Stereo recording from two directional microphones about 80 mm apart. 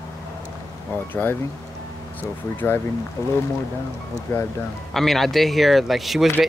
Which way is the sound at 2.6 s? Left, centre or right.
Left.